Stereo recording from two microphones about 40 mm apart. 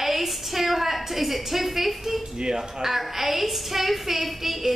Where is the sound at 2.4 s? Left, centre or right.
Centre.